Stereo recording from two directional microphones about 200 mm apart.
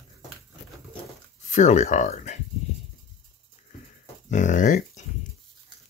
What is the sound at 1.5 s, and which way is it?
Speech, 35° left (ahead or behind).